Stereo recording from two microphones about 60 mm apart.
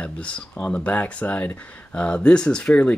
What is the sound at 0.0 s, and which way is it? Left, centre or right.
Speech, left.